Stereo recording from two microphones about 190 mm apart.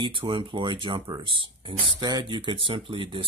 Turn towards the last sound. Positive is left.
turn(degrees=-30)  # may be behind; listen again after turning